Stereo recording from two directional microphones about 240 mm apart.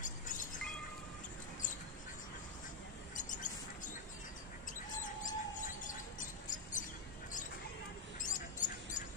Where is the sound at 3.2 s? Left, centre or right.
Left.